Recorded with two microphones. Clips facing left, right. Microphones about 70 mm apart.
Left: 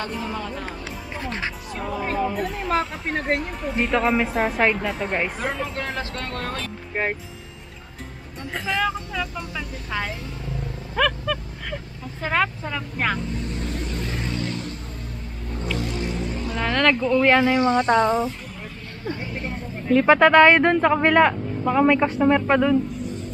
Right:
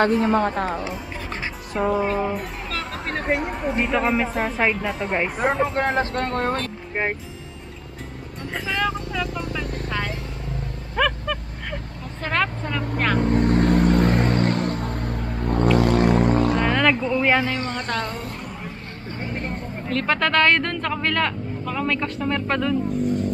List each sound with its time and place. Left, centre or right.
0.0 s speech: right
3.1 s speech: centre
5.4 s speech: right
6.9 s speech: centre
8.5 s speech: centre
11.0 s a sound: centre
12.2 s speech: centre
13.2 s vehicle: right
16.6 s speech: centre
17.4 s speech: centre
19.0 s speech: right
19.9 s speech: centre